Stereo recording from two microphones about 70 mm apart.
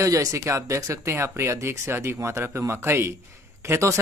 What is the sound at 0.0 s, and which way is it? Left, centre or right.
Speech, right.